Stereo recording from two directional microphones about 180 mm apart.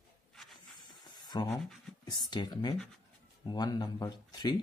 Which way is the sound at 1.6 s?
Centre (ahead or behind).